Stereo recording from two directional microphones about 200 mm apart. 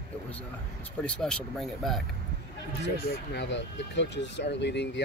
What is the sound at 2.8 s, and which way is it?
Speech, 60° left (ahead or behind).